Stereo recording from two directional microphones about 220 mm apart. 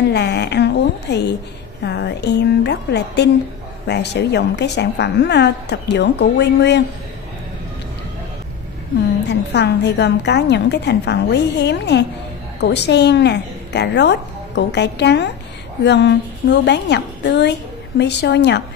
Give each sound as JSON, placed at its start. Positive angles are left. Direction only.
{"t": 0.1, "sound": "a woman's voice", "side_deg": 50}
{"t": 9.2, "sound": "a woman's voice", "side_deg": 50}